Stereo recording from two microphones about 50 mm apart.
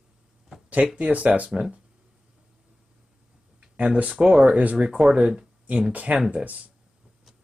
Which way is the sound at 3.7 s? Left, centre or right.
Centre.